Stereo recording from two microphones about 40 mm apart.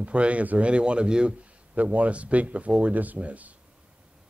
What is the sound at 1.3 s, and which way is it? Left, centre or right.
Speech, right.